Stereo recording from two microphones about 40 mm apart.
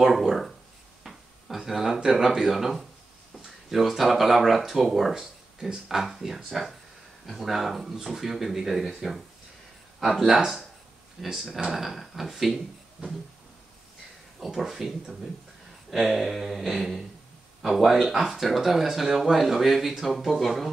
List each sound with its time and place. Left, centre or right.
0.0 s speech: centre
1.0 s a sound: centre
2.0 s speech: centre
5.1 s speech: centre
14.4 s speech: centre